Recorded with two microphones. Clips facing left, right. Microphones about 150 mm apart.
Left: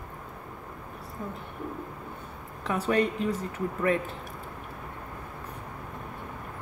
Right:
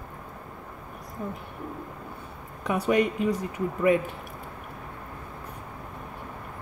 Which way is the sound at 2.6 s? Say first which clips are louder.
Right 2 dB; 15° right (ahead or behind).